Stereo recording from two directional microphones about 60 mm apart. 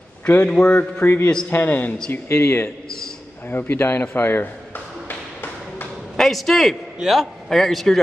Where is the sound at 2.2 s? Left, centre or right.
Left.